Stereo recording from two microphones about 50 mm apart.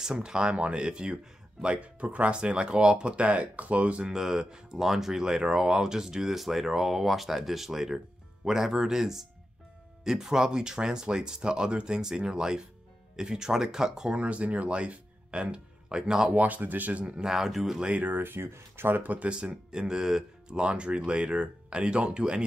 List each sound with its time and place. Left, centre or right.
0.0 s speech: centre
4.1 s speech: centre
14.1 s speech: right
16.3 s speech: right
17.2 s speech: centre
17.7 s speech: right
18.0 s speech: right
19.0 s speech: right